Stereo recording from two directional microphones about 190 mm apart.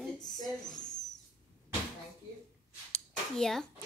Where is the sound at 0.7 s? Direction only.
40° left (ahead or behind).